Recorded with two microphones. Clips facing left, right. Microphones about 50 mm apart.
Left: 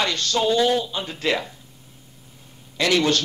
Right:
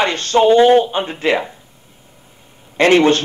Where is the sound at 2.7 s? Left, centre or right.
Right.